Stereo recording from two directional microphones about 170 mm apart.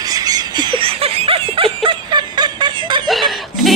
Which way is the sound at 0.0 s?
20° right (ahead or behind).